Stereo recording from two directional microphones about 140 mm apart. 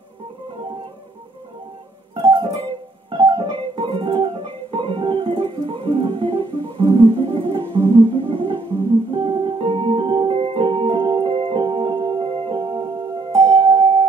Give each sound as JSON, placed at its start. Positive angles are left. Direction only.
{"t": 2.1, "sound": "music", "side_deg": -40}